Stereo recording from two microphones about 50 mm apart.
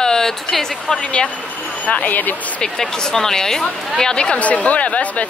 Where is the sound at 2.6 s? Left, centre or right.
Centre.